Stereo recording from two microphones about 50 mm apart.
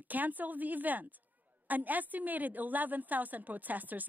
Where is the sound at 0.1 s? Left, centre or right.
Right.